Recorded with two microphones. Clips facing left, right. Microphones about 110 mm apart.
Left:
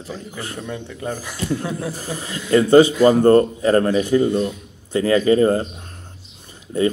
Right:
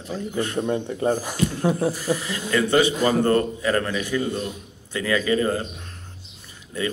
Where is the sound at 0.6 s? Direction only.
35° right (ahead or behind).